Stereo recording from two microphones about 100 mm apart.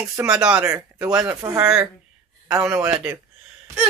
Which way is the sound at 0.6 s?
25° right (ahead or behind).